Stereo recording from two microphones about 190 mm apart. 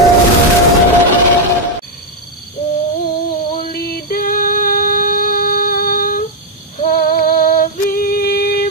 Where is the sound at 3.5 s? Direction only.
50° left (ahead or behind).